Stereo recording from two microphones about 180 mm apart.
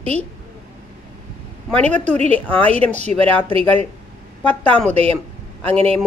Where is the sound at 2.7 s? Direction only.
35° right (ahead or behind).